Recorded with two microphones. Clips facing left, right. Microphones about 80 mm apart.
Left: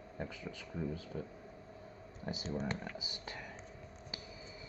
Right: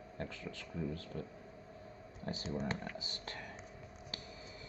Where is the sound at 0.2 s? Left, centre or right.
Centre.